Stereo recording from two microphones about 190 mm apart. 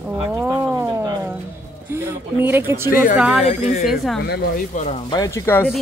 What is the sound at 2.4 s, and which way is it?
A woman's voice, 10° right (ahead or behind).